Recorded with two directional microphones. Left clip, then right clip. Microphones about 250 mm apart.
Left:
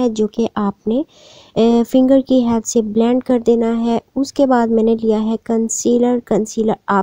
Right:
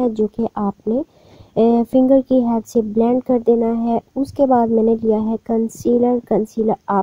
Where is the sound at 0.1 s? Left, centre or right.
Left.